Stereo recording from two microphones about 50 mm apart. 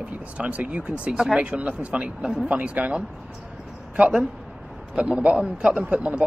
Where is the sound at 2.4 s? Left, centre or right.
Right.